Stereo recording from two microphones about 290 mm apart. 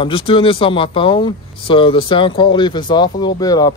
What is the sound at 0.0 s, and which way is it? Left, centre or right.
Speech, centre.